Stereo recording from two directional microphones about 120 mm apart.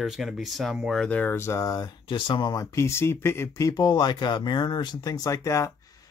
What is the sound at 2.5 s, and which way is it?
Speech, 25° left (ahead or behind).